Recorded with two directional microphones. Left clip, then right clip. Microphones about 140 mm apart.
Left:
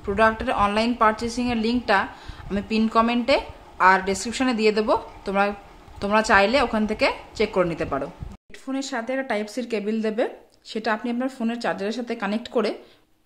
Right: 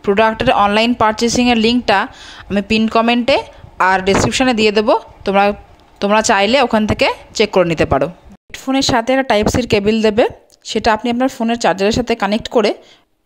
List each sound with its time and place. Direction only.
0.0 s a woman's voice: 65° right (ahead or behind)